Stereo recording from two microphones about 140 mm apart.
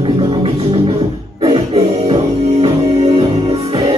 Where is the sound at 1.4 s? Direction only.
45° right (ahead or behind).